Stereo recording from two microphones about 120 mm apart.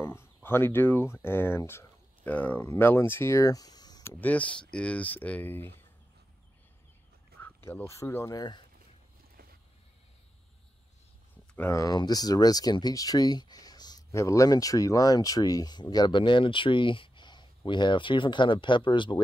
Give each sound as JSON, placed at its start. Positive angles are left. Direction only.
{"t": 0.0, "sound": "a sound", "side_deg": 20}
{"t": 1.2, "sound": "speech", "side_deg": 20}
{"t": 4.2, "sound": "speech", "side_deg": 10}
{"t": 7.4, "sound": "speech", "side_deg": 20}
{"t": 11.7, "sound": "speech", "side_deg": 30}